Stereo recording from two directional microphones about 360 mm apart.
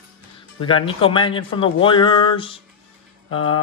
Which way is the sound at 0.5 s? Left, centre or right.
Centre.